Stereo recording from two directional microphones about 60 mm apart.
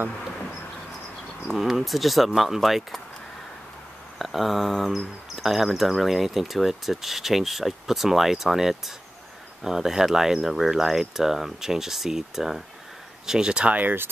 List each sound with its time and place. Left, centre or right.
1.5 s speech: centre
4.2 s speech: centre
13.3 s speech: centre